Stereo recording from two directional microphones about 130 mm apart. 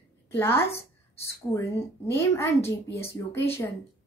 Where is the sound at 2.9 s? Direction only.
50° left (ahead or behind).